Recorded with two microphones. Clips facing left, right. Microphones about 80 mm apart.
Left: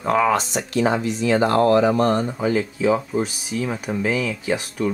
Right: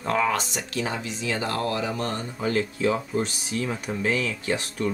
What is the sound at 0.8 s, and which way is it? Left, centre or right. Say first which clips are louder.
Speech: left 11 dB; left.